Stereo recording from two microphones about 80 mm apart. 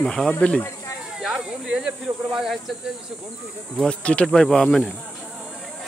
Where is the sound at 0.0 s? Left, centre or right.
Centre.